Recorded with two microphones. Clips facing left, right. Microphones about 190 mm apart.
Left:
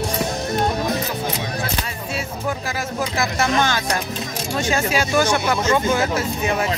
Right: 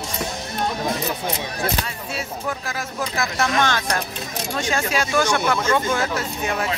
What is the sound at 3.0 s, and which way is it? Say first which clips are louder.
Speech: left 1 dB; 5° left (ahead or behind).